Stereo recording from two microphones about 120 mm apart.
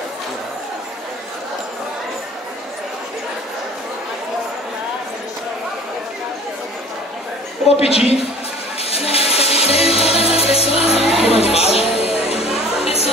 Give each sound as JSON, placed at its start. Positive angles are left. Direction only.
{"t": 7.6, "sound": "a woman's voice", "side_deg": 55}
{"t": 8.9, "sound": "music", "side_deg": 55}
{"t": 12.4, "sound": "music", "side_deg": -5}
{"t": 12.8, "sound": "music", "side_deg": 55}